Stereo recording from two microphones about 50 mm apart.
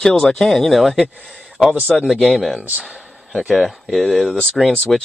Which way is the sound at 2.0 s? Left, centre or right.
Centre.